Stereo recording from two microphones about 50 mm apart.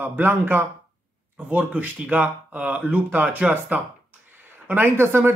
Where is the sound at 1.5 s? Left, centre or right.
Right.